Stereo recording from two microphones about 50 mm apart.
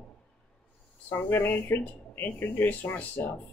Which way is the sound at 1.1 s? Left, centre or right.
Left.